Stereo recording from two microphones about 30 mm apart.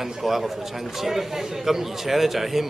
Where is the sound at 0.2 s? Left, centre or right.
Centre.